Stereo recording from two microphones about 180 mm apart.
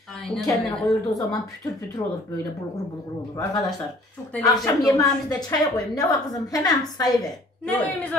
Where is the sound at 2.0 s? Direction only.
20° left (ahead or behind).